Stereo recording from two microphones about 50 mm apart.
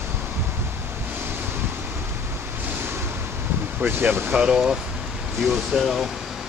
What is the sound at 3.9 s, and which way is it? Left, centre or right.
Speech, right.